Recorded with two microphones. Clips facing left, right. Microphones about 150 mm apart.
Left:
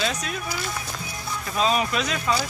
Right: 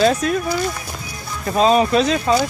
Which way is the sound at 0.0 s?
45° right (ahead or behind).